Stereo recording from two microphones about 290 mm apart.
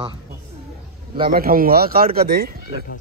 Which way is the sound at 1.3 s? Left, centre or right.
Right.